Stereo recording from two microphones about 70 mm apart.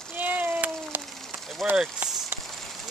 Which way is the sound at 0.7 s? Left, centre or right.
Centre.